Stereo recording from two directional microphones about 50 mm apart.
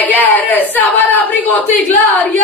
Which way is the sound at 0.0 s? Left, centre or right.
Left.